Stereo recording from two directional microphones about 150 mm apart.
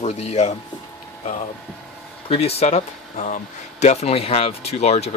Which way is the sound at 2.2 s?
40° left (ahead or behind).